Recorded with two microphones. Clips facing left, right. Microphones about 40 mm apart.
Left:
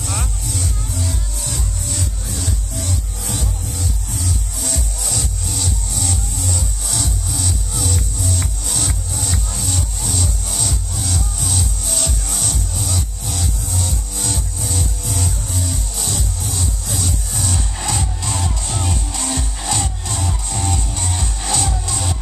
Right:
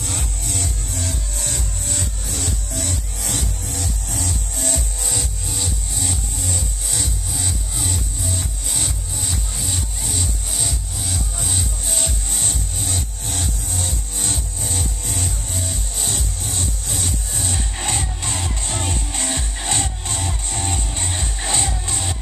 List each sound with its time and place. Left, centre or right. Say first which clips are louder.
0.5 s music: left 2 dB; right
1.5 s music: left 3 dB; right
2.2 s music: left 1 dB; right
5.0 s music: left 2 dB; centre
11.3 s music: left 2 dB; right